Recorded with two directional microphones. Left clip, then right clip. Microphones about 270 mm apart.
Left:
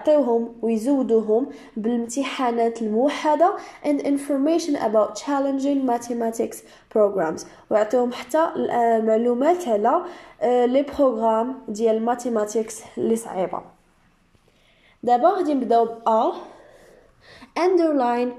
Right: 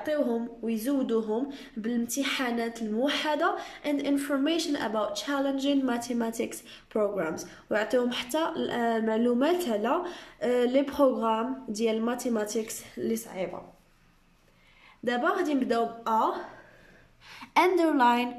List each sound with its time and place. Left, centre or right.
0.0 s a woman's voice: centre
13.2 s speech: left
15.0 s a woman's voice: centre